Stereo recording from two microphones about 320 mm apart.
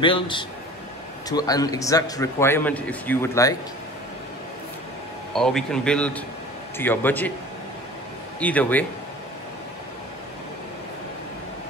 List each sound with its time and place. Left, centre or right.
0.0 s a man's voice: centre
5.3 s a man's voice: centre
8.4 s a man's voice: centre